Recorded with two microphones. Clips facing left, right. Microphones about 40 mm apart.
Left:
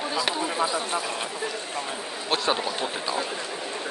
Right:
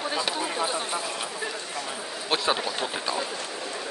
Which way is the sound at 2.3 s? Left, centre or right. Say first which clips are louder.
Even; centre.